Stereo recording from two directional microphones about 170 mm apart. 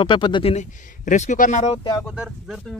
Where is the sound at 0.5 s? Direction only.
45° left (ahead or behind).